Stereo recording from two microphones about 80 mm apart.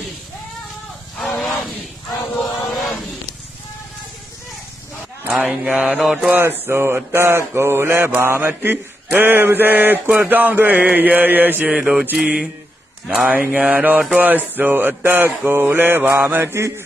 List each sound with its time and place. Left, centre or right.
1.1 s vehicle: centre
2.7 s a sound: centre
5.2 s a sound: centre
5.5 s mantra: centre
6.6 s mantra: right
11.8 s mantra: centre
13.0 s speech: centre
13.3 s mantra: right